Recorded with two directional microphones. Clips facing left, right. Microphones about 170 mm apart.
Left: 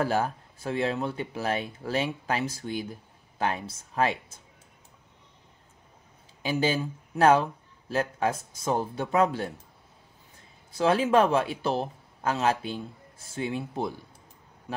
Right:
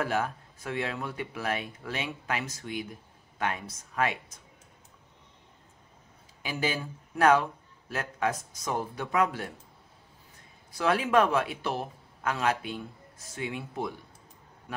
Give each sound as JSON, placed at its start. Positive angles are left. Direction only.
{"t": 0.0, "sound": "speech", "side_deg": 30}
{"t": 6.4, "sound": "a man's voice", "side_deg": 30}
{"t": 10.7, "sound": "a man's voice", "side_deg": 25}